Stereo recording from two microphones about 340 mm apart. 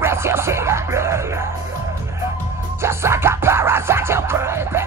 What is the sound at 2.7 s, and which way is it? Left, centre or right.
Music, centre.